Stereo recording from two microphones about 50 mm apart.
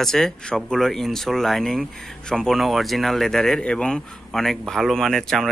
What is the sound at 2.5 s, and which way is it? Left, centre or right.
Speech, centre.